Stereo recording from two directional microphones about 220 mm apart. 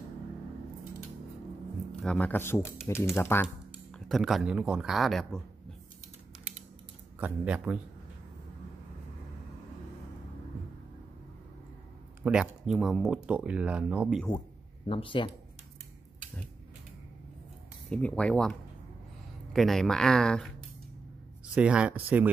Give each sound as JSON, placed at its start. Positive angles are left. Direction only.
{"t": 1.9, "sound": "speech", "side_deg": 5}
{"t": 3.9, "sound": "speech", "side_deg": 0}
{"t": 7.2, "sound": "speech", "side_deg": -5}
{"t": 12.2, "sound": "speech", "side_deg": -5}
{"t": 14.9, "sound": "speech", "side_deg": 25}
{"t": 17.8, "sound": "speech", "side_deg": 5}
{"t": 21.5, "sound": "speech", "side_deg": -5}